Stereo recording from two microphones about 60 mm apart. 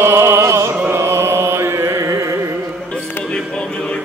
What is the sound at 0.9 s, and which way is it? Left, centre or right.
Music, right.